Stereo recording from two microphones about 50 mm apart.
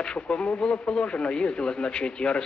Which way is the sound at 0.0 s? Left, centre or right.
Centre.